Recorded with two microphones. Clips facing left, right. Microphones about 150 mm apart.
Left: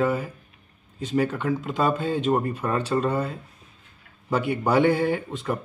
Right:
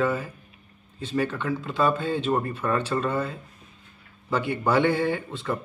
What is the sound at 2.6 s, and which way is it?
Speech, 20° left (ahead or behind).